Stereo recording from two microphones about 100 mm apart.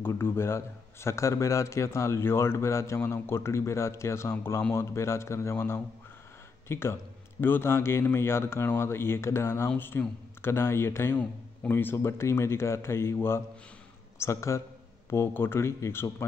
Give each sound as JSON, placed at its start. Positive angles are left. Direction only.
{"t": 0.0, "sound": "a man's voice", "side_deg": 25}